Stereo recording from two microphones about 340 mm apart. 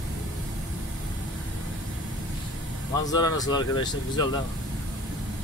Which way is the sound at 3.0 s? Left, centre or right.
Centre.